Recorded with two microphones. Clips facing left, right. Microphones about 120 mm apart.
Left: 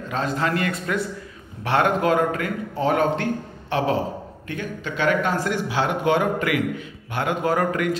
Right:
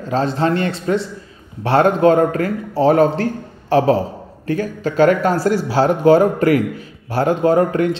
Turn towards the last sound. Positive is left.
turn(degrees=-30)  # may be behind; listen again after turning